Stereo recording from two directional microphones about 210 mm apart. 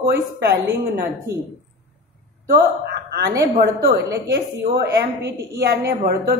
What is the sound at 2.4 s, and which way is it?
A woman's voice, 45° right (ahead or behind).